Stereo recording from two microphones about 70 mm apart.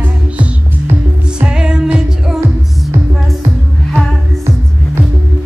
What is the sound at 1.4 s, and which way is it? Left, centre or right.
Music, centre.